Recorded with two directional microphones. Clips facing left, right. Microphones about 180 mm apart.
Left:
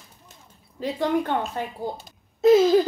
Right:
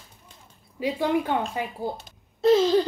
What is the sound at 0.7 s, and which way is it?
Speech, 10° right (ahead or behind).